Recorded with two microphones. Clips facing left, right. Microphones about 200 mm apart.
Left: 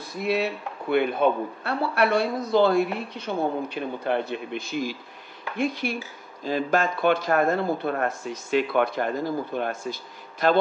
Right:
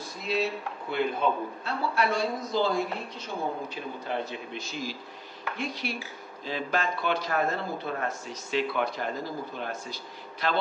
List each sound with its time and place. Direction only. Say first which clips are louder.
0.0 s a man's voice: left 4 dB; 60° left (ahead or behind)